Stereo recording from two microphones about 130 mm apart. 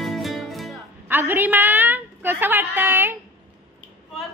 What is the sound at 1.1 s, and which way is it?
A woman's voice, 15° right (ahead or behind).